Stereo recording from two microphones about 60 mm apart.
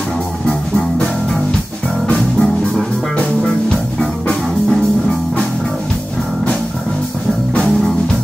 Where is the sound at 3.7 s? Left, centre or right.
Centre.